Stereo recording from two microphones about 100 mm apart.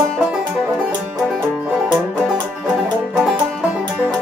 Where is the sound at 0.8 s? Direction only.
5° right (ahead or behind).